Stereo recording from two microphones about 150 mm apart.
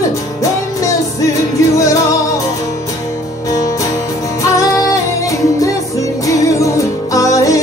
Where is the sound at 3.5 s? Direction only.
20° left (ahead or behind).